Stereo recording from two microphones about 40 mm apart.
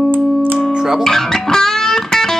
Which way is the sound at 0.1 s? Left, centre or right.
Right.